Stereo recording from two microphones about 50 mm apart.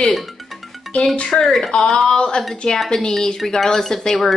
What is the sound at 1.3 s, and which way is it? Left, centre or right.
A woman's voice, centre.